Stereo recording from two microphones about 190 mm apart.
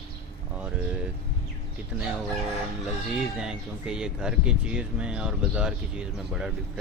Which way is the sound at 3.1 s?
5° right (ahead or behind).